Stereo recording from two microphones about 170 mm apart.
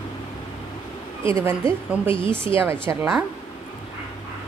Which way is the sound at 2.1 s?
30° left (ahead or behind).